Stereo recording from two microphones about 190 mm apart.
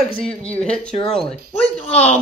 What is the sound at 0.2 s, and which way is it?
Speech, 5° left (ahead or behind).